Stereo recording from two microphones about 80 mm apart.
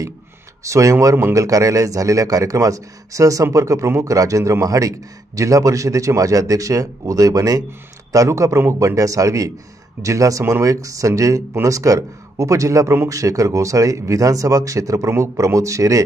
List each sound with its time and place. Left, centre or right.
0.7 s a man's voice: right